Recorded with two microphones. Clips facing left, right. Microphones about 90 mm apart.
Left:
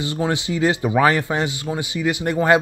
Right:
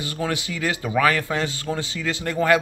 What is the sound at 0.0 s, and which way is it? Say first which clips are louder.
Speech: left 4 dB; 20° left (ahead or behind).